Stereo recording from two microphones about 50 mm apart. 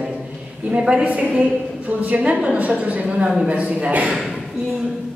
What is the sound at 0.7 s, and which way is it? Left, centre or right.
A woman's voice, centre.